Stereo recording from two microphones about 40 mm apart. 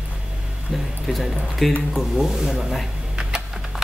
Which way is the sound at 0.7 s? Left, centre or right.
Centre.